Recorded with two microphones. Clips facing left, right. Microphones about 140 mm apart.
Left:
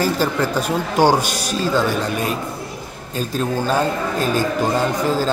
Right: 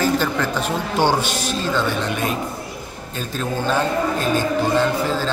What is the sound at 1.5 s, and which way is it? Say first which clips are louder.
Speech: left 4 dB; 40° left (ahead or behind).